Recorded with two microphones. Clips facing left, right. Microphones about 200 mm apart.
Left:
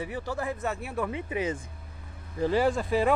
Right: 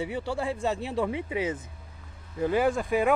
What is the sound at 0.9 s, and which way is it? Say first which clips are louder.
Speech: right 2 dB; 15° right (ahead or behind).